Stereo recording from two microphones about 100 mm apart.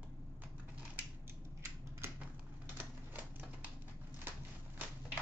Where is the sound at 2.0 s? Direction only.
25° right (ahead or behind).